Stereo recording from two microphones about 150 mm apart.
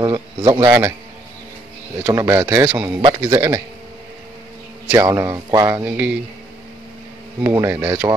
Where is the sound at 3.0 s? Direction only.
25° right (ahead or behind).